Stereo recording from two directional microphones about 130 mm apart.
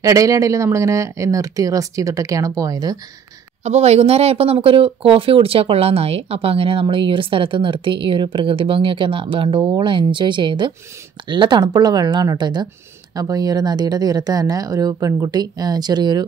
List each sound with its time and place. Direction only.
0.0 s speech: 25° right (ahead or behind)
3.6 s speech: 55° right (ahead or behind); by 16.3 s 30° right (ahead or behind)